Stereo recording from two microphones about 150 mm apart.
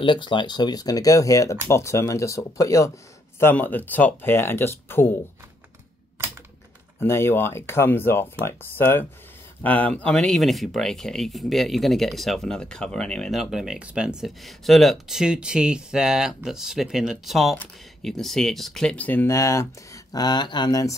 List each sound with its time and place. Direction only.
0.0 s speech: 30° left (ahead or behind); by 5.1 s 15° left (ahead or behind)
7.0 s speech: 15° left (ahead or behind)